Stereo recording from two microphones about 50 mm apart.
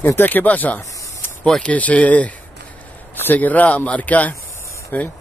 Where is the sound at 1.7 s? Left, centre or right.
Left.